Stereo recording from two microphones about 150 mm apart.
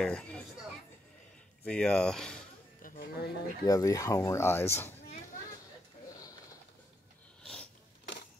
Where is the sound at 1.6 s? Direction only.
5° left (ahead or behind).